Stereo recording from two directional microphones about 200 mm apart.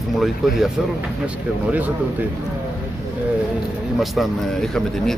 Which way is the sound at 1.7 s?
10° right (ahead or behind).